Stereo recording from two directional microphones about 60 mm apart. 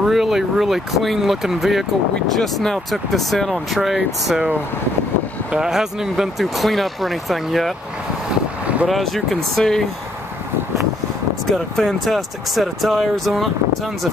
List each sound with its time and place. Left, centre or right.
0.0 s speech: centre
5.5 s speech: centre
8.8 s speech: centre
11.5 s speech: centre